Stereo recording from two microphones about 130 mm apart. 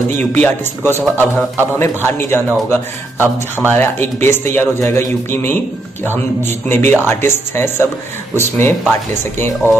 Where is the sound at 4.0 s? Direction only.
15° left (ahead or behind).